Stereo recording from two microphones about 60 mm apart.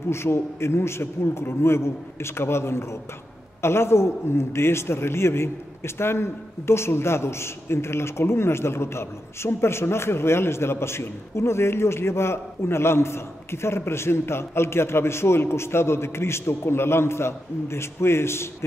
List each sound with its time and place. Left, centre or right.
0.1 s a man's voice: left